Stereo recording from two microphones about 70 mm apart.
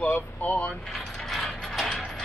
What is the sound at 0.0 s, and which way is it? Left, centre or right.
Speech, left.